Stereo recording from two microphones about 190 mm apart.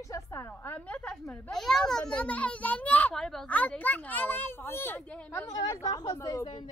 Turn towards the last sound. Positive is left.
turn(degrees=20)  # may be behind; listen again after turning